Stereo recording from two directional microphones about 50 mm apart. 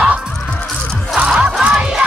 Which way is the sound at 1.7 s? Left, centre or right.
Centre.